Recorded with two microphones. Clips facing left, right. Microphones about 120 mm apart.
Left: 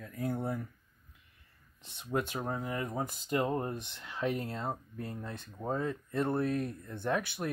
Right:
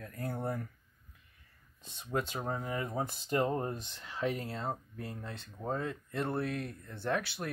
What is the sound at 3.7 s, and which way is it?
Speech, 15° left (ahead or behind).